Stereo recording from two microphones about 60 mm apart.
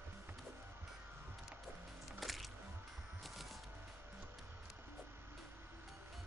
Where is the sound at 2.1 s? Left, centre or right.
Centre.